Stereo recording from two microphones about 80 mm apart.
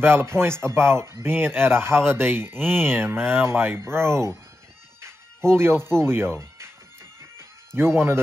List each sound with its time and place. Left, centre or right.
0.0 s speech: right
5.0 s music: right